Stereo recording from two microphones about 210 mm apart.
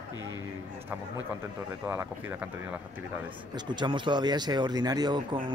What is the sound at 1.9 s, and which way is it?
Speech, 10° right (ahead or behind).